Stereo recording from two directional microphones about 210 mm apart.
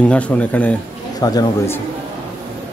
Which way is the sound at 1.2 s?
20° left (ahead or behind).